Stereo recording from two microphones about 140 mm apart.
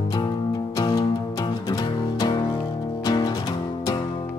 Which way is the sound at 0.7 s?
30° left (ahead or behind).